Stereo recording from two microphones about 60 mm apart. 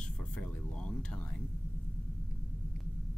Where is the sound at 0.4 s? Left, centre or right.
Centre.